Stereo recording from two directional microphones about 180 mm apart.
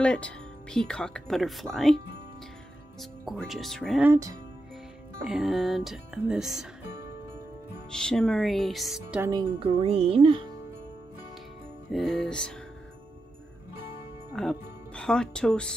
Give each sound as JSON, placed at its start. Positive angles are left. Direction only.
{"t": 0.0, "sound": "speech", "side_deg": 5}
{"t": 3.0, "sound": "speech", "side_deg": 0}
{"t": 4.0, "sound": "speech", "side_deg": -15}
{"t": 5.2, "sound": "speech", "side_deg": 0}
{"t": 7.9, "sound": "speech", "side_deg": 5}
{"t": 9.6, "sound": "speech", "side_deg": -30}
{"t": 11.9, "sound": "speech", "side_deg": 0}
{"t": 14.3, "sound": "speech", "side_deg": 5}